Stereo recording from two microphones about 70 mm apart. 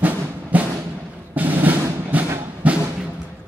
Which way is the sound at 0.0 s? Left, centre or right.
Right.